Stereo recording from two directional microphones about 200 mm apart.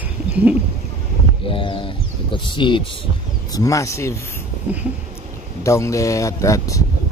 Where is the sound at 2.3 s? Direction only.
25° left (ahead or behind).